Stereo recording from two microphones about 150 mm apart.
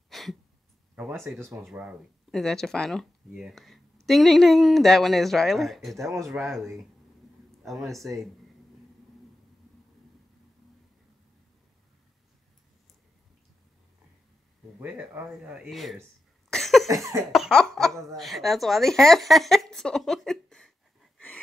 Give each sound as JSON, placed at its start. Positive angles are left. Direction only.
{"t": 0.1, "sound": "a sound", "side_deg": 0}
{"t": 0.9, "sound": "speech", "side_deg": -10}
{"t": 1.2, "sound": "speech", "side_deg": 0}
{"t": 15.0, "sound": "speech", "side_deg": -5}
{"t": 16.4, "sound": "cough", "side_deg": 0}
{"t": 16.8, "sound": "cough", "side_deg": -20}
{"t": 17.2, "sound": "speech", "side_deg": 0}